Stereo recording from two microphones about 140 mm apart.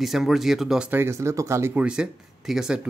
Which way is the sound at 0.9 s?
20° right (ahead or behind).